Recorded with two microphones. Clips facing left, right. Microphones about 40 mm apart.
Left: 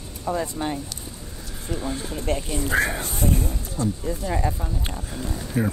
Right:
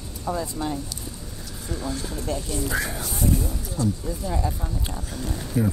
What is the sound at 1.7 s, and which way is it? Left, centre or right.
Speech, left.